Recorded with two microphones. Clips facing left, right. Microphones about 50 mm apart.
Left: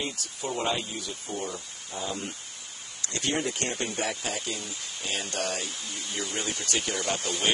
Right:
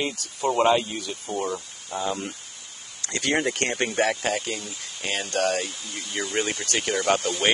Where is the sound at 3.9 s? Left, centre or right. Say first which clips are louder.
Right 8 dB; right.